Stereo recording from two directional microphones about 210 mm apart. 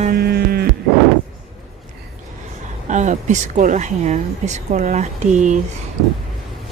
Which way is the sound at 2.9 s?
35° right (ahead or behind).